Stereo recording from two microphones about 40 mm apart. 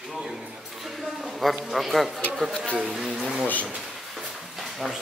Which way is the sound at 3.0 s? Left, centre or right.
Centre.